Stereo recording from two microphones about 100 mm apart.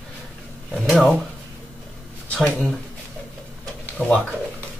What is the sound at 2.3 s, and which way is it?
Speech, 5° left (ahead or behind).